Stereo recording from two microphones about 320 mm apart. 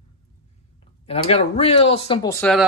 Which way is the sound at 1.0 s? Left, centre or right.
Centre.